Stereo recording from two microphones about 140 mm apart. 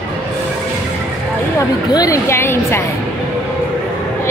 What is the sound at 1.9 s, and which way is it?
Music, 25° left (ahead or behind).